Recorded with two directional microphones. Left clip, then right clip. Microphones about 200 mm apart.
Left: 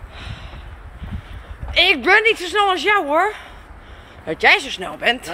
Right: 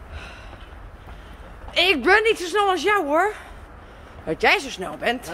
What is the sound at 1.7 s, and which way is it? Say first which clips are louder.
Speech: left 3 dB; 25° right (ahead or behind).